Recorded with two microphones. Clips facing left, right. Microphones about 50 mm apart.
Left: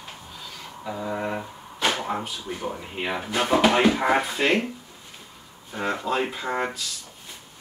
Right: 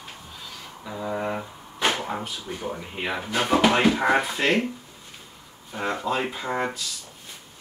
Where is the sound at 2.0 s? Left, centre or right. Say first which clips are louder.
Left 2 dB; centre.